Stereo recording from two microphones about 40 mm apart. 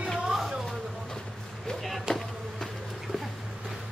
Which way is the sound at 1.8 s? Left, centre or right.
Centre.